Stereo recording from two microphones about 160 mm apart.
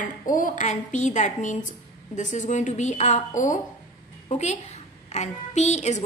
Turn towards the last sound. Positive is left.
turn(degrees=45)  # may be behind; listen again after turning